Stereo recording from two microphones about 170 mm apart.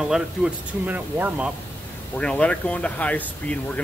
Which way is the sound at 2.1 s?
5° left (ahead or behind).